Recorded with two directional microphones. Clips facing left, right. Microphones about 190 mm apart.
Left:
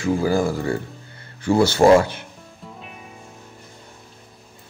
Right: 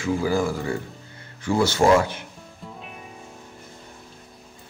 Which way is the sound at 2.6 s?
Centre (ahead or behind).